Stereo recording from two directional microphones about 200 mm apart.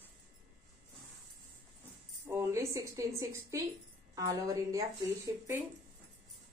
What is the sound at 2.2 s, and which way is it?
A woman's voice, 15° right (ahead or behind).